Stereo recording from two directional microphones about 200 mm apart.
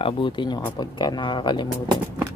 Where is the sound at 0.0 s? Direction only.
25° left (ahead or behind).